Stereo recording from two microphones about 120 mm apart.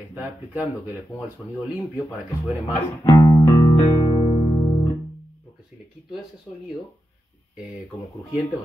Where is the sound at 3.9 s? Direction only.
35° left (ahead or behind).